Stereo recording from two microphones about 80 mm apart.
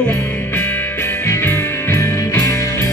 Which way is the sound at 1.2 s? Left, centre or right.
Left.